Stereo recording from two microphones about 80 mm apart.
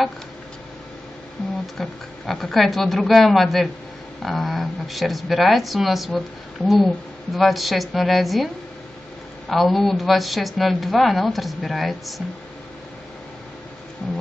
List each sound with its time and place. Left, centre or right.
1.8 s speech: centre
9.5 s speech: centre